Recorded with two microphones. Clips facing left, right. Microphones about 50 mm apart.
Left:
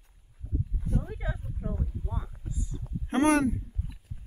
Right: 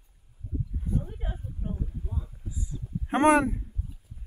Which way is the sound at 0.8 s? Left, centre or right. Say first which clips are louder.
Left 1 dB; left.